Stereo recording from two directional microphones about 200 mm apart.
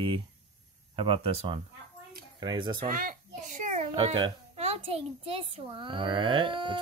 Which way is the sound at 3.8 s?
25° right (ahead or behind).